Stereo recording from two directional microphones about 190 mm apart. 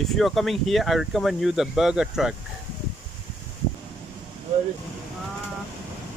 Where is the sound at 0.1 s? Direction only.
Centre (ahead or behind).